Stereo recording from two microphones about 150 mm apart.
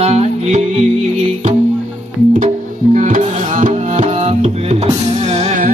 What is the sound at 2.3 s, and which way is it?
Music, 55° right (ahead or behind).